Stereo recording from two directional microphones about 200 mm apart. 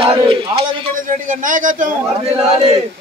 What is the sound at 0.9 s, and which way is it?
A man's voice, 40° right (ahead or behind).